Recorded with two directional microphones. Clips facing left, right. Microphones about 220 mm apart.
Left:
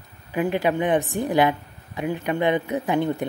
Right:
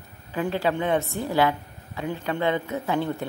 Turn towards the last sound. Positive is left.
turn(degrees=15)  # may be behind; listen again after turning